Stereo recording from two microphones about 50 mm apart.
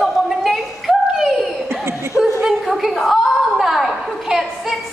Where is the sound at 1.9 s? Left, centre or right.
Right.